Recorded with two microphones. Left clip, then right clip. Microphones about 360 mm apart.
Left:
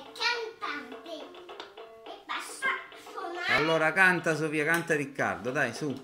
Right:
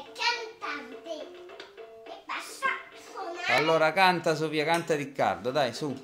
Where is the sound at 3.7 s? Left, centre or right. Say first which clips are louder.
Right 1 dB; centre.